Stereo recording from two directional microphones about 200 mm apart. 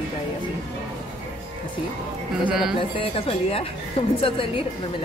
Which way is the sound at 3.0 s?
30° left (ahead or behind).